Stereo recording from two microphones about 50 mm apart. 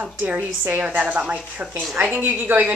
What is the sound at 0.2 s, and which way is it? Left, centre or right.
A woman's voice, right.